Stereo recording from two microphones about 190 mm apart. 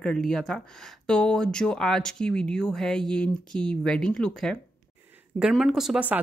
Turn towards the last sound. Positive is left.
turn(degrees=-5)  # may be behind; listen again after turning